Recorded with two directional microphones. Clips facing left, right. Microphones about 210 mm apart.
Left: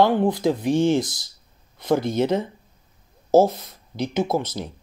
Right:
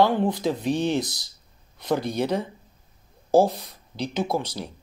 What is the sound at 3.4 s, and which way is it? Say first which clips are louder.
Speech: left 2 dB; 15° right (ahead or behind).